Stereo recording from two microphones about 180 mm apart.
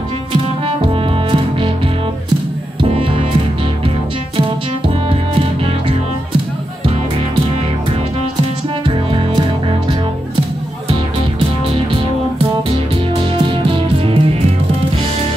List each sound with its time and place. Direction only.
0.3 s music: 30° right (ahead or behind)
2.8 s music: 30° right (ahead or behind)
4.4 s music: 30° right (ahead or behind)
8.8 s music: 30° right (ahead or behind)